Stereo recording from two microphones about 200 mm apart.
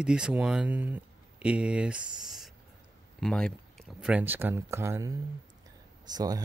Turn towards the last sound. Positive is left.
turn(degrees=-20)  # may be behind; listen again after turning